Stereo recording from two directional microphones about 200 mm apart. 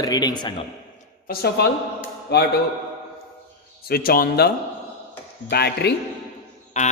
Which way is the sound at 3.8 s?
50° left (ahead or behind).